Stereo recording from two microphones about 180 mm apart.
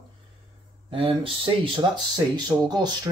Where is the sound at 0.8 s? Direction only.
30° right (ahead or behind).